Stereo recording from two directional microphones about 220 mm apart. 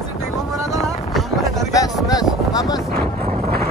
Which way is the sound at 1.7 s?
15° left (ahead or behind).